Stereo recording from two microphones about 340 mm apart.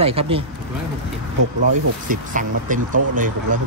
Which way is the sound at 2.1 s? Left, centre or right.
Right.